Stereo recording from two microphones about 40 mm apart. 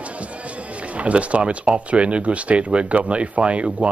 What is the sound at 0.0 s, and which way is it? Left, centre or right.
Speech, right.